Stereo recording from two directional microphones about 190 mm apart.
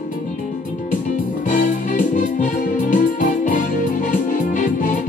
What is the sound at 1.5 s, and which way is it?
Music, 40° left (ahead or behind).